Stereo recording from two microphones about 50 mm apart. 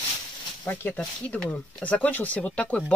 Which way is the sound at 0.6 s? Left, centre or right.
Left.